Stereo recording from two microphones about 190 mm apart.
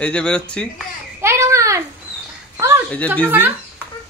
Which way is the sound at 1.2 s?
15° right (ahead or behind).